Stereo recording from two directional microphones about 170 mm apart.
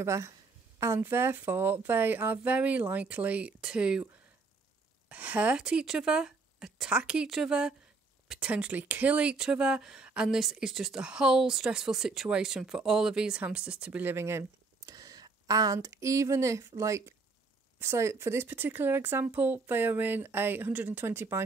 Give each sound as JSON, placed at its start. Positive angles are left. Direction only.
{"t": 0.0, "sound": "speech", "side_deg": -15}
{"t": 5.1, "sound": "a woman's voice", "side_deg": -10}